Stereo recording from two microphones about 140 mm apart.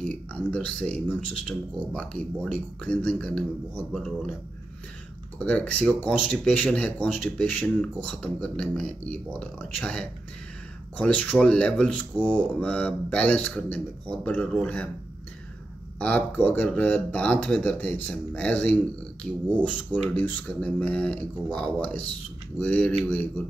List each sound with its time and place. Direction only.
0.0 s speech: 10° left (ahead or behind)
5.4 s speech: 10° left (ahead or behind)
16.0 s speech: 10° left (ahead or behind)